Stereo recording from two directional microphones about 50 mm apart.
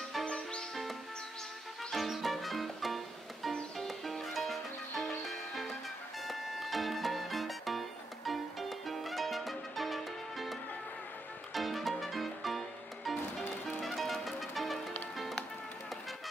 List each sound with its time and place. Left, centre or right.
0.2 s music: centre
1.9 s music: centre